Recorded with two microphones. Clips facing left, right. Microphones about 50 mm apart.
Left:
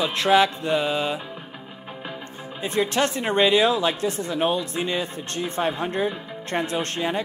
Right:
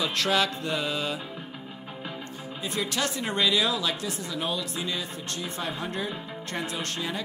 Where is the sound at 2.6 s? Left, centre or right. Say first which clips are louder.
Left 7 dB; left.